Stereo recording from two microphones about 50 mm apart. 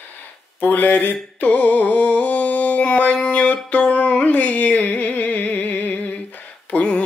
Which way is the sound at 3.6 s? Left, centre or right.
Left.